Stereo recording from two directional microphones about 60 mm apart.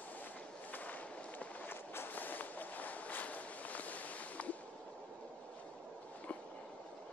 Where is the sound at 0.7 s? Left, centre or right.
Left.